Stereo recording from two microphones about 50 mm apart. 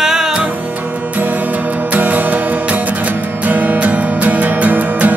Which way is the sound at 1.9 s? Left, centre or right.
Right.